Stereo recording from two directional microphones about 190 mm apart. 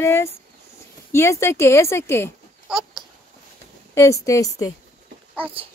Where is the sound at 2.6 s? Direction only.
5° right (ahead or behind).